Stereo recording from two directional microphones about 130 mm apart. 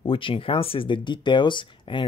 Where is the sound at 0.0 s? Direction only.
45° left (ahead or behind).